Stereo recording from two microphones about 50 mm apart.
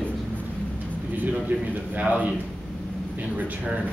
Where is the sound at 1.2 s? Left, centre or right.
Right.